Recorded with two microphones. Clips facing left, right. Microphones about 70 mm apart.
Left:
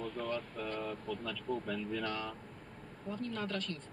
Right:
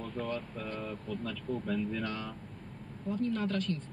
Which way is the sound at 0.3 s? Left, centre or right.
Right.